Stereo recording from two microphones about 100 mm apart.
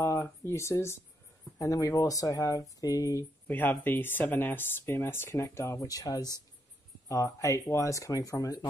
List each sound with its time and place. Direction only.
0.0 s speech: 25° left (ahead or behind)
3.4 s speech: 20° left (ahead or behind); by 8.6 s 35° left (ahead or behind)